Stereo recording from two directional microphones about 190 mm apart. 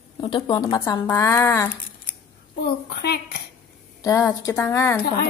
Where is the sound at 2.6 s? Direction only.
60° left (ahead or behind).